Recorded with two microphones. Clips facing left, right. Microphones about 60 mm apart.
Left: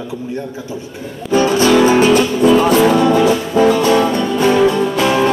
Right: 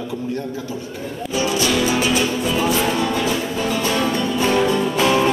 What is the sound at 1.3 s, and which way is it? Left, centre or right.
Music, left.